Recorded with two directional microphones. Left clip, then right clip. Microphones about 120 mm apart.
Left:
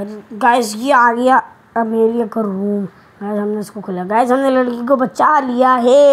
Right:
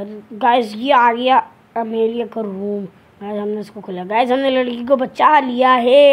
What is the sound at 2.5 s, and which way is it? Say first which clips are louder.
Speech: left 3 dB; 5° left (ahead or behind).